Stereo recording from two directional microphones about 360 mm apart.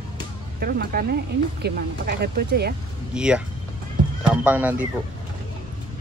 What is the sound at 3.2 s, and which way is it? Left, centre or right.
Speech, centre.